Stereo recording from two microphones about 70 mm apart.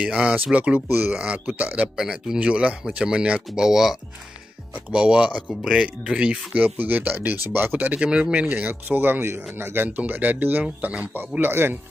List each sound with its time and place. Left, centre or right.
0.0 s speech: centre
2.0 s speech: centre
4.7 s speech: centre; by 9.8 s right
9.8 s speech: right
11.1 s speech: right